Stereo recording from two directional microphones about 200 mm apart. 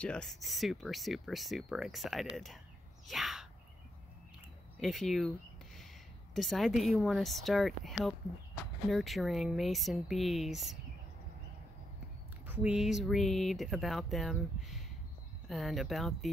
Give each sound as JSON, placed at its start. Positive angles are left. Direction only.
{"t": 0.0, "sound": "speech", "side_deg": 5}
{"t": 3.1, "sound": "a sound", "side_deg": 0}
{"t": 4.7, "sound": "speech", "side_deg": 0}
{"t": 6.3, "sound": "speech", "side_deg": 0}
{"t": 12.4, "sound": "speech", "side_deg": -5}